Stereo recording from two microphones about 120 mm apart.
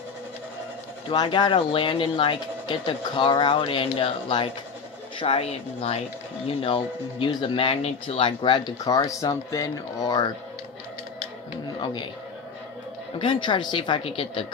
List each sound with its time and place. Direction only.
1.0 s speech: 40° left (ahead or behind)
11.6 s a sound: 40° left (ahead or behind)
13.2 s speech: 45° left (ahead or behind)